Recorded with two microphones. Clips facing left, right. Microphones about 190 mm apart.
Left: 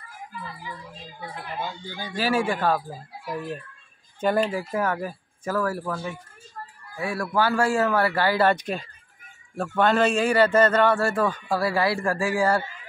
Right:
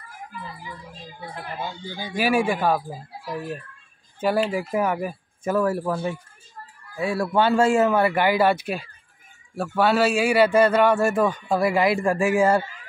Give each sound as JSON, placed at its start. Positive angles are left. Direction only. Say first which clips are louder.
{"t": 2.0, "sound": "a man's voice", "louder": "right 3 dB", "side_deg": -10}